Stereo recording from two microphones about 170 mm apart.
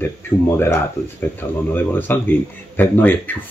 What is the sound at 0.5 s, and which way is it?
Speech, 15° left (ahead or behind).